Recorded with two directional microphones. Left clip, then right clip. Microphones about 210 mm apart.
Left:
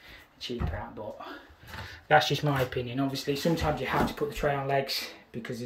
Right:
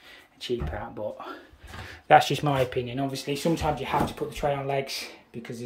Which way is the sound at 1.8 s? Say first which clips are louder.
Right 5 dB; 20° right (ahead or behind).